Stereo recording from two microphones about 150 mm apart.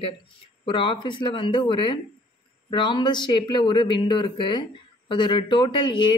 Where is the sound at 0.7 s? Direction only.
30° left (ahead or behind).